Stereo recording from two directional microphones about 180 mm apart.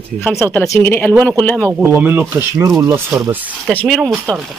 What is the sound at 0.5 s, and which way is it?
Speech, 15° left (ahead or behind).